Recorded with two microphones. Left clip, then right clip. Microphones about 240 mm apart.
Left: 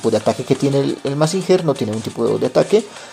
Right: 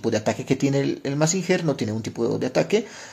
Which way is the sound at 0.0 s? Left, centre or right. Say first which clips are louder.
Left 7 dB; centre.